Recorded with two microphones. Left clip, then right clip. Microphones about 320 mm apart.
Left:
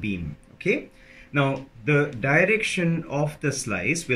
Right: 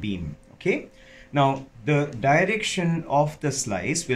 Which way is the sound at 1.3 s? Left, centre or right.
Centre.